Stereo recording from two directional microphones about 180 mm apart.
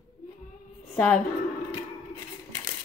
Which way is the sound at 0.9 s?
5° left (ahead or behind).